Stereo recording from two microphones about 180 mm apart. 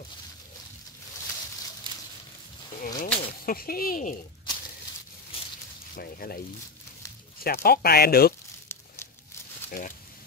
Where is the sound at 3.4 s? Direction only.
55° left (ahead or behind).